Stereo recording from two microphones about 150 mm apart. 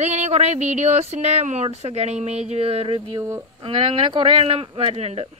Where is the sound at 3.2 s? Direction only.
20° right (ahead or behind).